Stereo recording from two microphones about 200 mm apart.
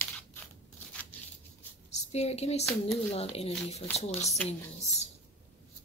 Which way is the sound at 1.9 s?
35° left (ahead or behind).